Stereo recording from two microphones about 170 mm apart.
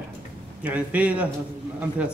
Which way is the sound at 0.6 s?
10° right (ahead or behind).